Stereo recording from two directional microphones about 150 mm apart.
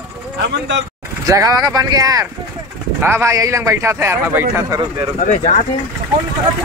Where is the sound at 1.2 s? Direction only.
20° right (ahead or behind).